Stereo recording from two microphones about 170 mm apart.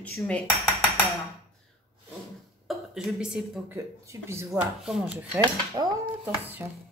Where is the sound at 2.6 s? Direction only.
5° right (ahead or behind).